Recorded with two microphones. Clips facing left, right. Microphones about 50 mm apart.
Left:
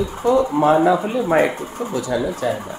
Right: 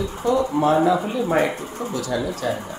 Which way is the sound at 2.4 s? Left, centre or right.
Centre.